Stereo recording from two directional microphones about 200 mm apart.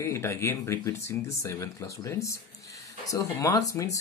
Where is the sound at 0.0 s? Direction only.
15° left (ahead or behind).